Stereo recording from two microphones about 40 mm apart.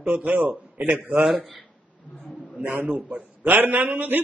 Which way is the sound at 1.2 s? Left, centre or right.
Centre.